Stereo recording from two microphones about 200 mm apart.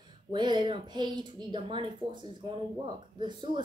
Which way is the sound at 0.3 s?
20° right (ahead or behind).